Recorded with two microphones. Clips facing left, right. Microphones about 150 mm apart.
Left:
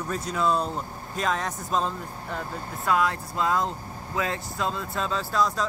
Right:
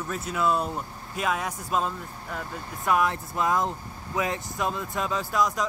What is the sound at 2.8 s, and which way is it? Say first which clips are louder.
Speech: even; 20° right (ahead or behind).